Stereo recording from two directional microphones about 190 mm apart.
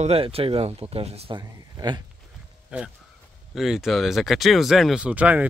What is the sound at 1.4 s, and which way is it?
Speech, 20° right (ahead or behind).